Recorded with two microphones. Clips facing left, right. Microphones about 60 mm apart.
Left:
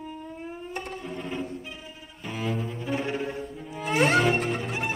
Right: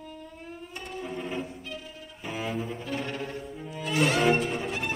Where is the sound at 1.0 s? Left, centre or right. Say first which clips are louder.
Right 4 dB; centre.